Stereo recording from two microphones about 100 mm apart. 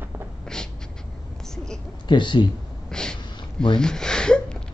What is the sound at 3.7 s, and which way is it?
Gasp, 5° left (ahead or behind).